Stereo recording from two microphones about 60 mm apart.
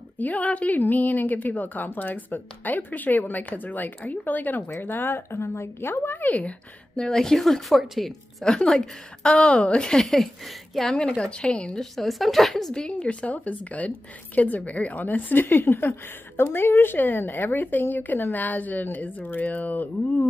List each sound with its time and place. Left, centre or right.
0.2 s a woman's voice: left
6.2 s a woman's voice: left
7.0 s speech: centre
9.2 s a woman's voice: centre
10.0 s speech: centre
11.0 s a woman's voice: centre
11.8 s a woman's voice: centre; by 15.4 s left
15.4 s a woman's voice: left